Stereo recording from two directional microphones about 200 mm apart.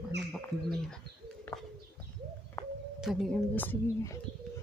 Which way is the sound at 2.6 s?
15° left (ahead or behind).